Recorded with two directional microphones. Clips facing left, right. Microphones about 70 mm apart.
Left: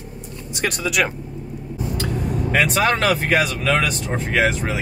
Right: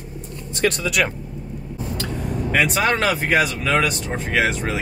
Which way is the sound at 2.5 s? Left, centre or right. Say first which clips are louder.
Left 1 dB; centre.